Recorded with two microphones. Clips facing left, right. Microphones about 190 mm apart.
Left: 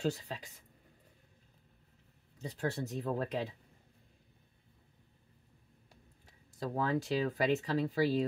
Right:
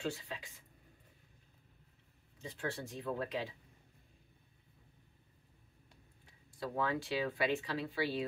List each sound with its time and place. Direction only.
0.0 s speech: 40° left (ahead or behind)
2.4 s speech: 40° left (ahead or behind)
6.6 s speech: 40° left (ahead or behind)